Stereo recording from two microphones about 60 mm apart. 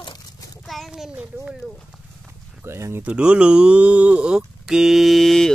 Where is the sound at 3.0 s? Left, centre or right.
Centre.